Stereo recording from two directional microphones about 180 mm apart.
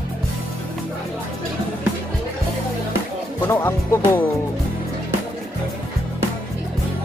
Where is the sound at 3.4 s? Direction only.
15° left (ahead or behind).